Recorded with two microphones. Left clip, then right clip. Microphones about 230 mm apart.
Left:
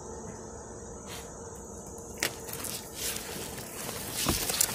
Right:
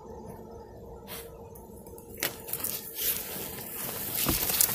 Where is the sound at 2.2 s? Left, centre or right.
Centre.